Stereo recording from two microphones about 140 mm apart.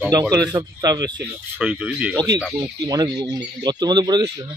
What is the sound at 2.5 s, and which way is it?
Speech, 30° right (ahead or behind).